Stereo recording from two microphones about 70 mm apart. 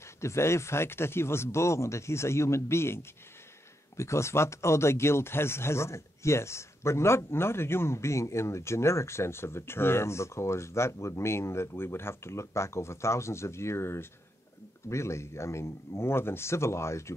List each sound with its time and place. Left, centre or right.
0.2 s speech: left